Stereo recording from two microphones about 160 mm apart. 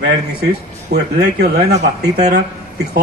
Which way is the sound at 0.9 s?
90° right.